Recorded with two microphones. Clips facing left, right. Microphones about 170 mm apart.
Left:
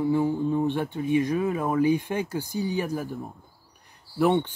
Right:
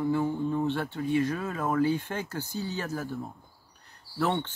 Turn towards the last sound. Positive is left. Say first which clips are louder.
# left 6 dB
turn(degrees=15)  # may be behind; listen again after turning